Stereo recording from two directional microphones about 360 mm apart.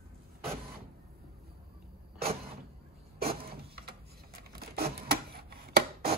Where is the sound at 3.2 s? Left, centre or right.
Centre.